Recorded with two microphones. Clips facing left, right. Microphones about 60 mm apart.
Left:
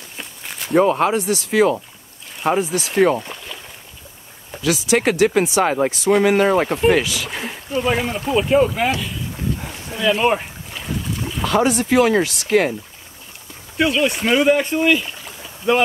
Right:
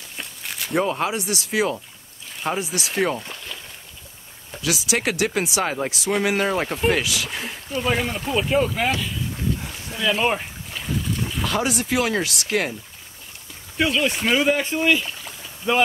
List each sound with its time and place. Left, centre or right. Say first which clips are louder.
0.2 s walk: even; centre
1.1 s speech: left 6 dB; centre
3.0 s speech: left 8 dB; centre
4.6 s speech: left 6 dB; centre
5.6 s speech: left 7 dB; centre
5.9 s speech: left 7 dB; centre
6.4 s speech: left 6 dB; centre
9.6 s boat: left 3 dB; centre
13.7 s speech: left 3 dB; centre